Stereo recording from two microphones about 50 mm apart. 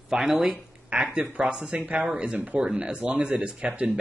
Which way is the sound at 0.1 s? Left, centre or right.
Centre.